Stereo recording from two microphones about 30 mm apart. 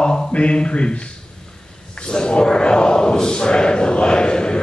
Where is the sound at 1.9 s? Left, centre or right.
Left.